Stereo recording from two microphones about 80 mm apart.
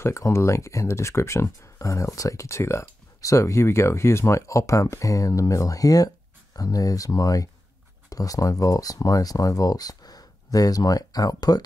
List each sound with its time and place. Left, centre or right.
0.0 s speech: left